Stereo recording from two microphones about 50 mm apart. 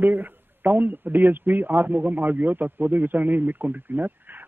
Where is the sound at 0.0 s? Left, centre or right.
Right.